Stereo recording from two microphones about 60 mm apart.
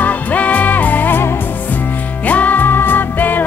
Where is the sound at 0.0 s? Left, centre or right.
Left.